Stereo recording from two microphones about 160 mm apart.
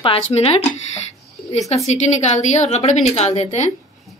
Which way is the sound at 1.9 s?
45° left (ahead or behind).